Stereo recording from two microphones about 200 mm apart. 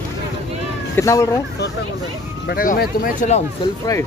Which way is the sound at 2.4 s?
50° left (ahead or behind).